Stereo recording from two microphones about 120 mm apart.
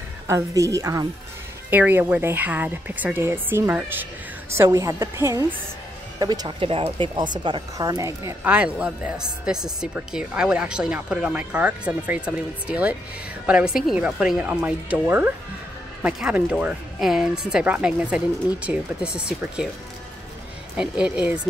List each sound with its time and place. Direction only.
0.3 s a woman's voice: 25° right (ahead or behind)
1.7 s a woman's voice: 15° right (ahead or behind)
6.1 s speech: 35° right (ahead or behind)
6.6 s speech: 50° right (ahead or behind)
7.4 s a woman's voice: 35° right (ahead or behind)
8.5 s a woman's voice: 10° right (ahead or behind)
20.7 s a woman's voice: 5° right (ahead or behind)